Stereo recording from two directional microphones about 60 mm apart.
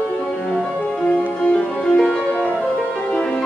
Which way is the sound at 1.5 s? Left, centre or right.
Centre.